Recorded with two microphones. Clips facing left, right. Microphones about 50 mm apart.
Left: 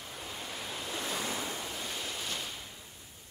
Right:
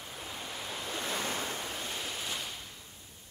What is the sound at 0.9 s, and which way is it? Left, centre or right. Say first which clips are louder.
Waves: right 1 dB; right.